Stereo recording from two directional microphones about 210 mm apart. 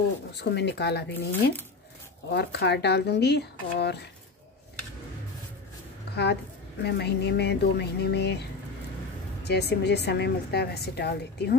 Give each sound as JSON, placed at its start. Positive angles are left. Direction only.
{"t": 0.3, "sound": "a woman's voice", "side_deg": 55}
{"t": 1.1, "sound": "speech", "side_deg": 10}
{"t": 2.3, "sound": "a woman's voice", "side_deg": 50}
{"t": 6.8, "sound": "a woman's voice", "side_deg": 55}